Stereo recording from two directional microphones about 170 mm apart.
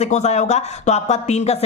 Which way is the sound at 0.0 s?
40° left (ahead or behind).